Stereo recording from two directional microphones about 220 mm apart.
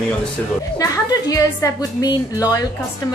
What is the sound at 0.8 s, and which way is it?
A woman's voice, 15° left (ahead or behind).